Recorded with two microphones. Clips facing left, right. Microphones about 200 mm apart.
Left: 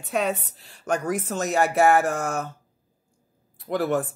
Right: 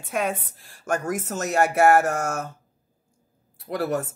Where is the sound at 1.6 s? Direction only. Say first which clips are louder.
Right 1 dB; 45° right (ahead or behind).